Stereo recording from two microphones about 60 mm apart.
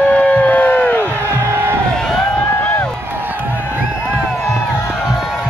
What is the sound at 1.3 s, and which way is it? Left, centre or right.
Music, right.